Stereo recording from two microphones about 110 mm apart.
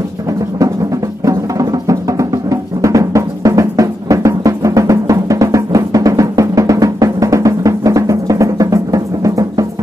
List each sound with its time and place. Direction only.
1.2 s music: 35° right (ahead or behind)